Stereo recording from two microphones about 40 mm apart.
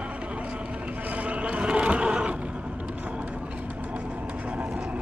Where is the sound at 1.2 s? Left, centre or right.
Right.